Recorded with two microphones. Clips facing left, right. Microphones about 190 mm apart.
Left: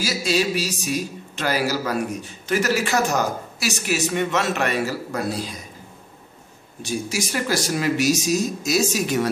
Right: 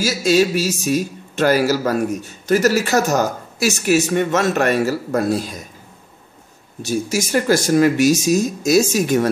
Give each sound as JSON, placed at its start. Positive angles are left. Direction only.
{"t": 0.0, "sound": "a man's voice", "side_deg": -45}
{"t": 6.8, "sound": "a man's voice", "side_deg": -45}